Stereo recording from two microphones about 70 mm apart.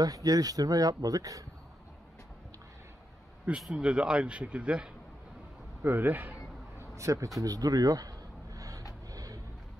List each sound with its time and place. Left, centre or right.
0.0 s speech: right
3.7 s speech: centre
5.8 s speech: right
6.8 s a sound: right
7.3 s speech: right
8.5 s vehicle: right